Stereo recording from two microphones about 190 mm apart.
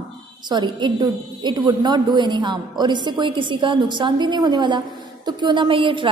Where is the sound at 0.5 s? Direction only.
25° right (ahead or behind).